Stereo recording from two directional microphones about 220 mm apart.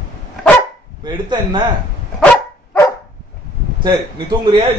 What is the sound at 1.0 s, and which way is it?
Speech, 20° right (ahead or behind).